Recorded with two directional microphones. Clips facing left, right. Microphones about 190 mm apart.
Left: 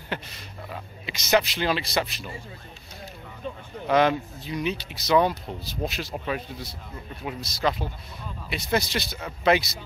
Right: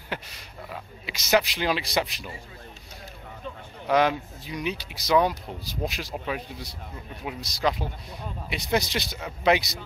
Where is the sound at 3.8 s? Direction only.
10° right (ahead or behind).